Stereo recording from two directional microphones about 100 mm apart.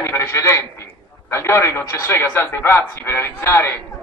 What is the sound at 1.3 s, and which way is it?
A man's voice, 30° left (ahead or behind).